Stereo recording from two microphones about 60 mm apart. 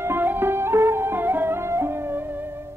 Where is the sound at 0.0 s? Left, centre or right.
Right.